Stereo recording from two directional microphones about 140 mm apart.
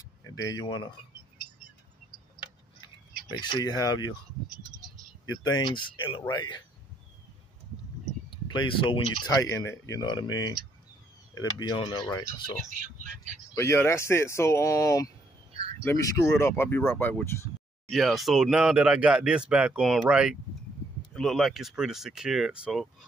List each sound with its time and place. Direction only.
0.3 s speech: 25° left (ahead or behind)
3.3 s speech: 25° left (ahead or behind)
5.2 s speech: 30° left (ahead or behind)
8.3 s speech: 35° left (ahead or behind)
9.4 s speech: 20° left (ahead or behind)
11.5 s speech: 30° left (ahead or behind)
12.3 s speech: 70° right (ahead or behind)
13.6 s speech: 20° left (ahead or behind)
17.8 s speech: centre (ahead or behind)